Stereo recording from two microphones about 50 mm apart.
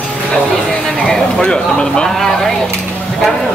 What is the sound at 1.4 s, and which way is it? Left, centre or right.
Speech, centre.